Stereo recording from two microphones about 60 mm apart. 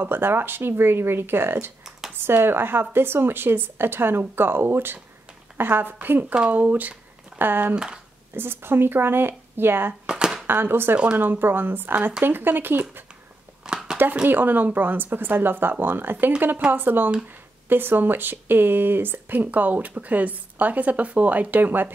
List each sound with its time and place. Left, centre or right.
0.0 s a woman's voice: right
7.7 s speech: centre
8.4 s a woman's voice: right
10.0 s a sound: centre
10.4 s a woman's voice: right
13.7 s a sound: centre
14.2 s a woman's voice: right